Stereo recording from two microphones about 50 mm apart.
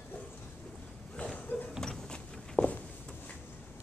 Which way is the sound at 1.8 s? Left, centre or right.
Centre.